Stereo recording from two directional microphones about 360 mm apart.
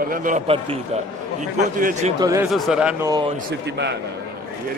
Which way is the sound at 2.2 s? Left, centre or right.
Centre.